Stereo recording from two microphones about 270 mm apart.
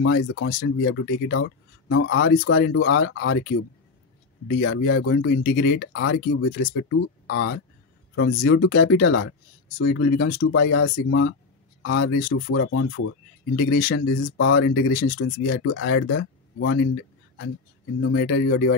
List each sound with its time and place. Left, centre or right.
0.0 s speech: left
4.5 s speech: left
13.6 s speech: left
13.8 s speech: left
15.1 s speech: left
18.0 s speech: left